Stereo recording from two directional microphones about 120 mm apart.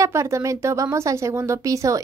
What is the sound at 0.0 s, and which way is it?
Speech, 25° right (ahead or behind).